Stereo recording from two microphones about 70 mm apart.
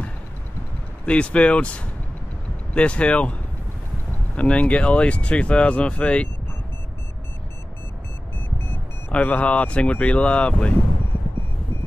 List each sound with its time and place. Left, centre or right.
1.0 s speech: centre
4.4 s speech: centre
9.1 s speech: centre